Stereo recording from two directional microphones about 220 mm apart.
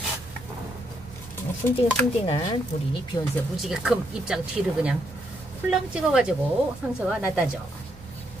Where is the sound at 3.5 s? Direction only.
Centre (ahead or behind).